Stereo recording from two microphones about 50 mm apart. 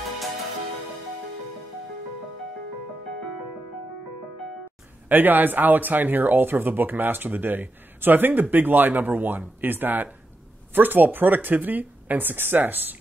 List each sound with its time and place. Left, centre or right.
5.0 s speech: right